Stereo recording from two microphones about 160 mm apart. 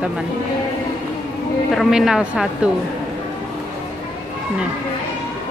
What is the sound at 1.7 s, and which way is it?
Speech, centre (ahead or behind).